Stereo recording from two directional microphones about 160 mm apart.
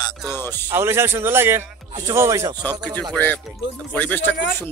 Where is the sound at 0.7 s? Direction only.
15° right (ahead or behind).